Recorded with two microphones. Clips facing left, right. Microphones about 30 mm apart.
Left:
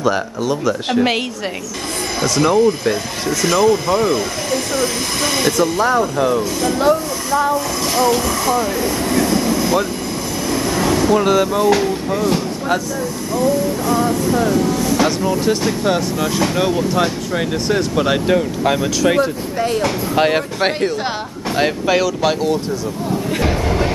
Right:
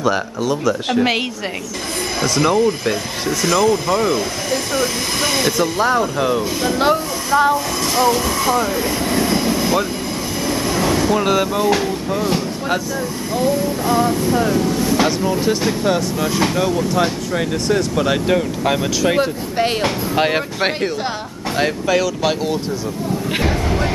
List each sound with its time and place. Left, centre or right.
0.0 s speech: centre
2.2 s speech: centre
5.6 s speech: centre
8.0 s speech: centre
9.3 s vehicle: centre
13.9 s speech: centre
14.7 s vehicle: centre
15.0 s speech: centre
20.2 s speech: centre
21.5 s speech: centre
22.2 s speech: centre